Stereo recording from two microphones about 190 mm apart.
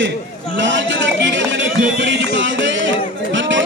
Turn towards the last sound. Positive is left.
turn(degrees=-75)  # may be behind; listen again after turning